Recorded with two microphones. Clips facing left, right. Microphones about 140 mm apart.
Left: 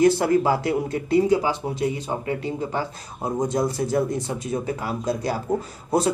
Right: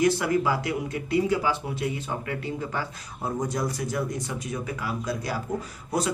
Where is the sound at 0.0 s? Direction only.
35° left (ahead or behind).